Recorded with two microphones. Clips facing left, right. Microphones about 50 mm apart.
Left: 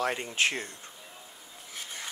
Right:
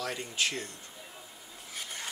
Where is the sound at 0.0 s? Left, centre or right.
Left.